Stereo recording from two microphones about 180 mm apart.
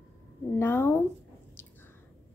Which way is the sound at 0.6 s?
10° left (ahead or behind).